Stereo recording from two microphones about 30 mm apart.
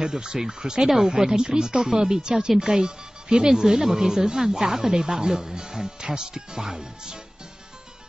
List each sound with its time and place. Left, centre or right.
0.0 s a woman's voice: right
0.8 s speech: centre
1.1 s a woman's voice: right